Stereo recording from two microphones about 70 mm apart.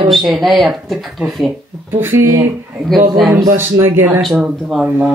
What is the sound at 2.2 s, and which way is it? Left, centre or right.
Speech, right.